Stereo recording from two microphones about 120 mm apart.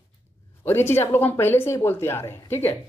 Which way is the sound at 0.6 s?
20° left (ahead or behind).